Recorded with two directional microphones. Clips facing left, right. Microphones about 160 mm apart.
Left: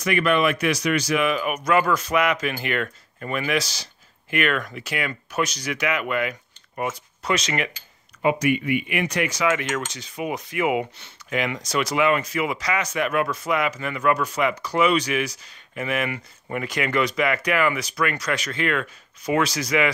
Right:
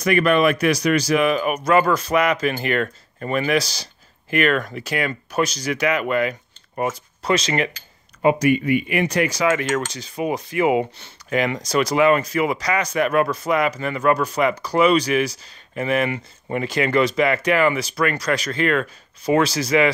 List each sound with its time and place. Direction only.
0.0 s speech: 40° right (ahead or behind)